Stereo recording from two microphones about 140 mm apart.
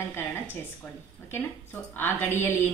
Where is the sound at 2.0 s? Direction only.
15° left (ahead or behind).